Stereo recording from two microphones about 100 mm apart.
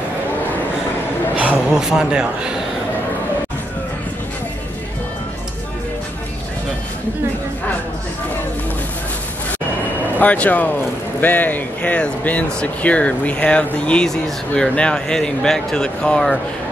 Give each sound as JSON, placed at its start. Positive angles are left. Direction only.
{"t": 1.3, "sound": "a man's voice", "side_deg": -15}
{"t": 10.1, "sound": "speech", "side_deg": 15}